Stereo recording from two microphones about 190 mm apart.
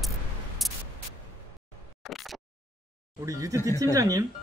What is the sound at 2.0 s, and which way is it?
Single-lens reflex camera, centre (ahead or behind).